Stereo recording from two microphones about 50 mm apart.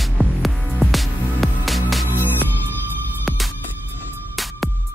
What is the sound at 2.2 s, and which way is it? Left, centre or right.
Music, left.